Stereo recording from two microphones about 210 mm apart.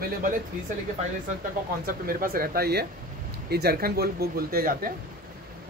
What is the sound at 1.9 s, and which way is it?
Speech, 40° right (ahead or behind).